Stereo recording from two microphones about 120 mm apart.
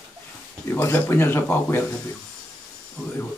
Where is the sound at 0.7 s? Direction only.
15° left (ahead or behind).